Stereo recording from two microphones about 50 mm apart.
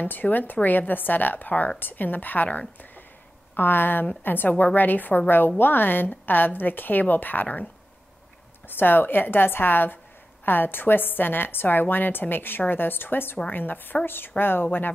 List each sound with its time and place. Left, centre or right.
0.0 s a woman's voice: left
2.8 s a sound: left
3.5 s a woman's voice: left
8.6 s a woman's voice: left